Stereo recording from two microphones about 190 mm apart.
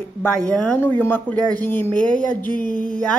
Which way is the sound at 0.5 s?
5° left (ahead or behind).